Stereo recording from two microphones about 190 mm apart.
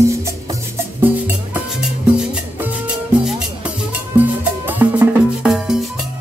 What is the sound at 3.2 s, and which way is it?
Music, 5° right (ahead or behind).